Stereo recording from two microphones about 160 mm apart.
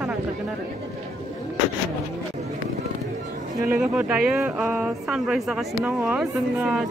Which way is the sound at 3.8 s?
5° right (ahead or behind).